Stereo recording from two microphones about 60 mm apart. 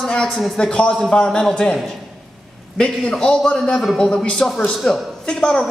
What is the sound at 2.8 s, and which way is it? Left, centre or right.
Speech, centre.